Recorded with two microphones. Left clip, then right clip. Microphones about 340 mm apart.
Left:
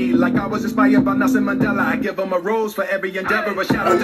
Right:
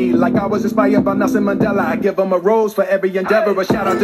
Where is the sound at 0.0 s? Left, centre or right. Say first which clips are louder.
Right 3 dB; right.